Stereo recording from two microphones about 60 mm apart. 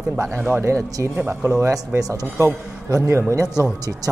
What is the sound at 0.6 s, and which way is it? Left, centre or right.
Speech, right.